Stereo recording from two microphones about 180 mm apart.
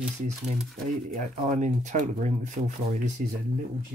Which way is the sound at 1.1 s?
45° right (ahead or behind).